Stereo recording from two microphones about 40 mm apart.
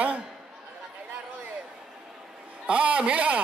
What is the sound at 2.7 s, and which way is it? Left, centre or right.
Speech, right.